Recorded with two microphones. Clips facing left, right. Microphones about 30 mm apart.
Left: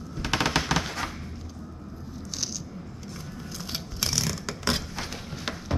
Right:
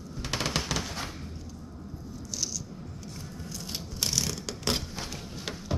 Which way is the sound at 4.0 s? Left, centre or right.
Centre.